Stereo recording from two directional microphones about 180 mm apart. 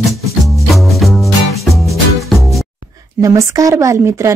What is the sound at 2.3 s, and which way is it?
Music, centre (ahead or behind).